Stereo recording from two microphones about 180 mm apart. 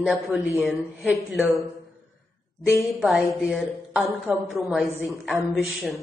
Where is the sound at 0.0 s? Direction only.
5° right (ahead or behind).